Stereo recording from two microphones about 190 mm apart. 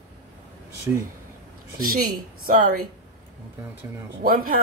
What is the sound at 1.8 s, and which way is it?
Speech, 50° right (ahead or behind).